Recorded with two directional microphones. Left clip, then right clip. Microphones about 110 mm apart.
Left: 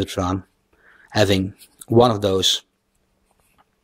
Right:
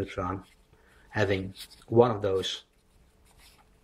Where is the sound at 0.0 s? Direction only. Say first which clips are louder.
Left 9 dB; 40° left (ahead or behind).